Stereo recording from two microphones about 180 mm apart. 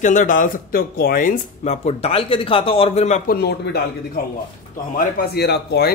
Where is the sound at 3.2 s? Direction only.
60° left (ahead or behind).